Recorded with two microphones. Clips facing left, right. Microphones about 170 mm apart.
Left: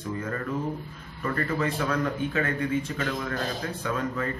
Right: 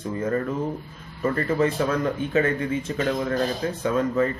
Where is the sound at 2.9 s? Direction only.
25° right (ahead or behind).